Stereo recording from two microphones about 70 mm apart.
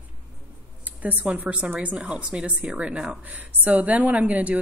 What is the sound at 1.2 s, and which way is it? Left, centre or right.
A woman's voice, centre.